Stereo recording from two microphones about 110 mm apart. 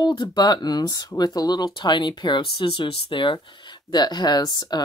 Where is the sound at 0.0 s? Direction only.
40° left (ahead or behind).